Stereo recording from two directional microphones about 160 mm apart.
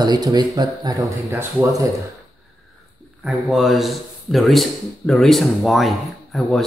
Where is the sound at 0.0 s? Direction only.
25° right (ahead or behind).